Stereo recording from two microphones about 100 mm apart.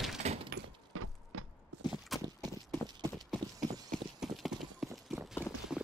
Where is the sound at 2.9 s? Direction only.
45° right (ahead or behind).